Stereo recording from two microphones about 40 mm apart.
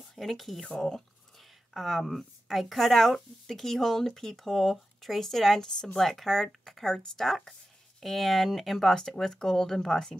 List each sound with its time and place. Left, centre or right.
0.0 s a woman's voice: centre